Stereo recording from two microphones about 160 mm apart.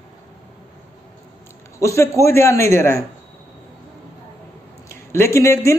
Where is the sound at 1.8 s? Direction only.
20° left (ahead or behind).